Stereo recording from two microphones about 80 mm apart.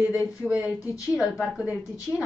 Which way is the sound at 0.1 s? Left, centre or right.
Centre.